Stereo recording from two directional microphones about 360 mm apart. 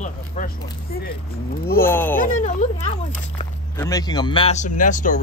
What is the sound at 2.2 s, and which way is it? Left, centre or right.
Speech, left.